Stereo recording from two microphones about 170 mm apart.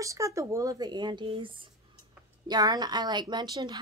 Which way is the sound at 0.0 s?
20° right (ahead or behind).